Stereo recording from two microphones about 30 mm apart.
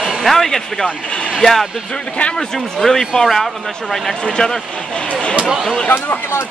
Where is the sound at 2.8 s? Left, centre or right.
Centre.